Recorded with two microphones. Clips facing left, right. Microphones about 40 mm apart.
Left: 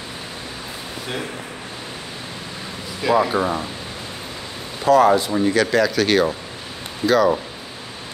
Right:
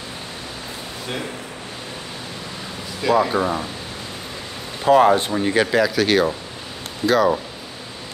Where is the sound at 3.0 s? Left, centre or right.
Centre.